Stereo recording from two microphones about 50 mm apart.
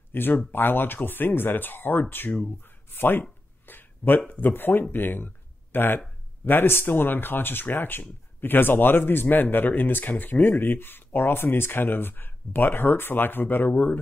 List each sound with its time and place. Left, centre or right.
0.1 s speech: left
2.6 s a sound: left
4.3 s speech: left